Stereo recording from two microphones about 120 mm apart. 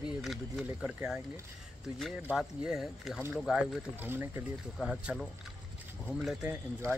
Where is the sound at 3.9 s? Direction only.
15° right (ahead or behind).